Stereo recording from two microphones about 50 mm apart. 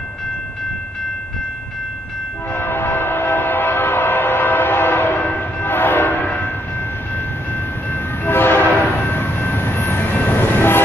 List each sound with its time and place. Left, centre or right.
2.5 s train: left
7.9 s train horn: left
9.8 s train: left